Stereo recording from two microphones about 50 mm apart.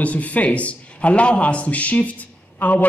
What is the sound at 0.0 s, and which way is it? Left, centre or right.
A man's voice, left.